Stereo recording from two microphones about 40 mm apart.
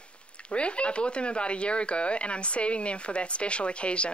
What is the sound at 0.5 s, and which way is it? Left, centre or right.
Speech, left.